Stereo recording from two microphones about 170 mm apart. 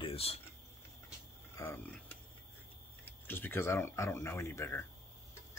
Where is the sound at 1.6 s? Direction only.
10° left (ahead or behind).